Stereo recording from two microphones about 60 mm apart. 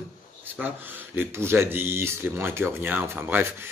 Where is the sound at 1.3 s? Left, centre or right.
Right.